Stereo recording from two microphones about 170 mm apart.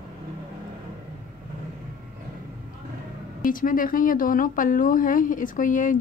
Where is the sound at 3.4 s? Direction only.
55° left (ahead or behind).